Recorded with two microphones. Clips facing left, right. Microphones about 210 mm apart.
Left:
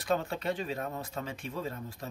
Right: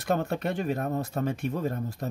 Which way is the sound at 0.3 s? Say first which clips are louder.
Right 5 dB; 65° right (ahead or behind).